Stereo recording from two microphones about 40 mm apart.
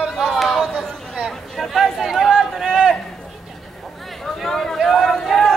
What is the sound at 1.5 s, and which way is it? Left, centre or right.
Chatter, centre.